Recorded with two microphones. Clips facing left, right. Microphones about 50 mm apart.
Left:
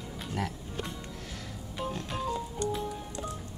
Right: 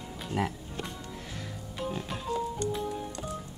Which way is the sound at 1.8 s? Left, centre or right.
Centre.